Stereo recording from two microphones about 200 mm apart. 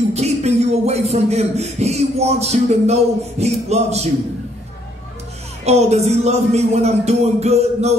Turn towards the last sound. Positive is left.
turn(degrees=-30)  # may be behind; listen again after turning